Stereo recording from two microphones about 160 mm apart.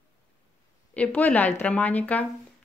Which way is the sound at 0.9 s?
10° left (ahead or behind).